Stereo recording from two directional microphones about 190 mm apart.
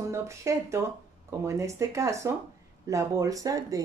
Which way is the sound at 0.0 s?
15° right (ahead or behind).